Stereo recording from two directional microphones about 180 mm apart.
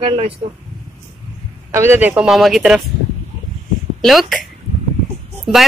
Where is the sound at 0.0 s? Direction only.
30° right (ahead or behind).